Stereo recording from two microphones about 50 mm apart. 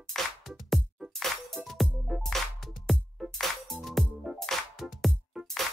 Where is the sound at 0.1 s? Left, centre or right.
Centre.